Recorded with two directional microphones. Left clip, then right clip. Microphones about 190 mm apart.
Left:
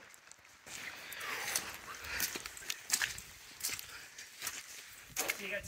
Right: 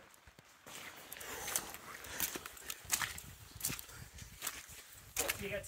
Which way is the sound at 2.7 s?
35° right (ahead or behind).